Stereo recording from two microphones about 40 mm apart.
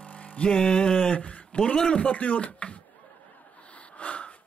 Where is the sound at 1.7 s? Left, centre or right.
Left.